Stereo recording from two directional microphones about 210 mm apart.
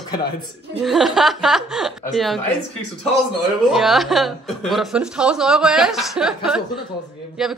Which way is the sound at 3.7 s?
Centre (ahead or behind).